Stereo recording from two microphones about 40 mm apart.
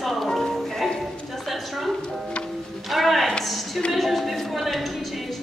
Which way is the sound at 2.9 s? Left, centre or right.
Centre.